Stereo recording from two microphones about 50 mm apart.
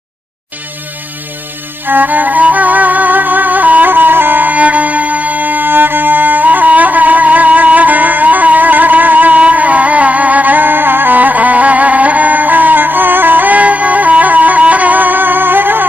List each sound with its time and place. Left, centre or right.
1.9 s music: right